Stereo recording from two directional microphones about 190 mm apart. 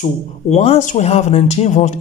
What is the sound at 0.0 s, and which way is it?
Speech, 35° left (ahead or behind).